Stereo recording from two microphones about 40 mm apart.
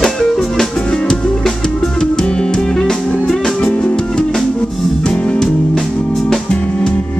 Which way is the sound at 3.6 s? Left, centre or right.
Left.